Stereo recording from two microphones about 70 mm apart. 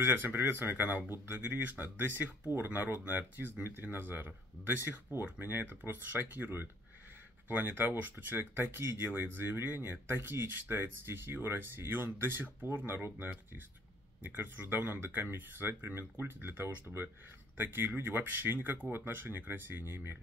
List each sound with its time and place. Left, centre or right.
0.1 s speech: right